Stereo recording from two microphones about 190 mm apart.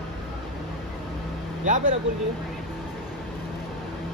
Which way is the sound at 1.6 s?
40° right (ahead or behind).